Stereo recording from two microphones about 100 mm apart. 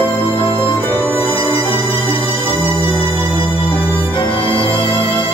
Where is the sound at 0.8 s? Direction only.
20° left (ahead or behind).